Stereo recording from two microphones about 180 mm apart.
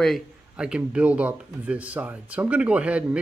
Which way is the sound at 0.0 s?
Centre (ahead or behind).